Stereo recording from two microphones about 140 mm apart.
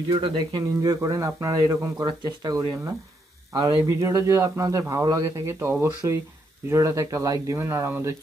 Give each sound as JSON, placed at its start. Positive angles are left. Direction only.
{"t": 0.1, "sound": "speech", "side_deg": -35}